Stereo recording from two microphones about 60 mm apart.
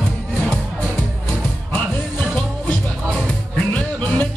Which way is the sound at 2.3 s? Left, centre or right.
Centre.